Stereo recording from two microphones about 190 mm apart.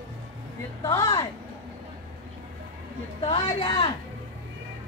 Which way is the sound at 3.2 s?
30° left (ahead or behind).